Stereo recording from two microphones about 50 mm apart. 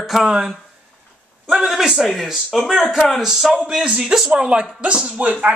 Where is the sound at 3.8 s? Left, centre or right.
Right.